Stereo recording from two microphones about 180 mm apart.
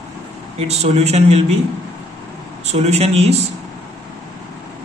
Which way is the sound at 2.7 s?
40° right (ahead or behind).